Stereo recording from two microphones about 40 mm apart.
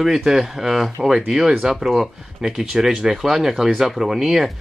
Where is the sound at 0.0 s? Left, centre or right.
Centre.